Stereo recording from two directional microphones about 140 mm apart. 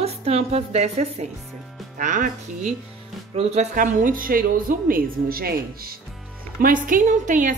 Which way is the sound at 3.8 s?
75° right (ahead or behind).